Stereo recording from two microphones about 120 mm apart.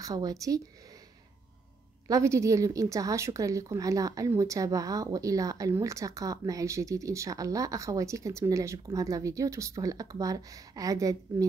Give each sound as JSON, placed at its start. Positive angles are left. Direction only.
{"t": 0.0, "sound": "a woman's voice", "side_deg": -30}
{"t": 2.0, "sound": "a woman's voice", "side_deg": -25}